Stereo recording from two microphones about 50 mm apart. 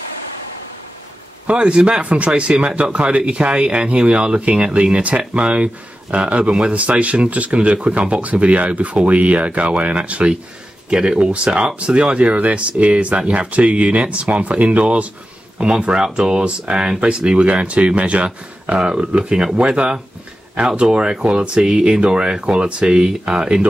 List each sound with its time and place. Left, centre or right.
1.5 s speech: right